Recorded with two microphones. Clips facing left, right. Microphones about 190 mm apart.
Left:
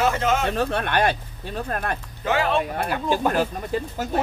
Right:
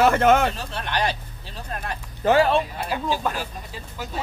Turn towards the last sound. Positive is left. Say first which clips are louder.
# left 9 dB
turn(degrees=50)  # may be behind; listen again after turning